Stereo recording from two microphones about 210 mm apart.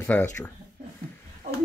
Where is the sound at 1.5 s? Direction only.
35° right (ahead or behind).